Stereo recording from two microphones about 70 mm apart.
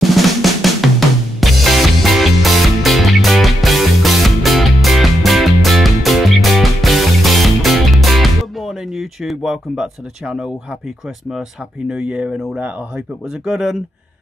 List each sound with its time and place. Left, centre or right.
0.0 s drum: centre
11.9 s speech: centre
12.5 s speech: right
13.3 s speech: centre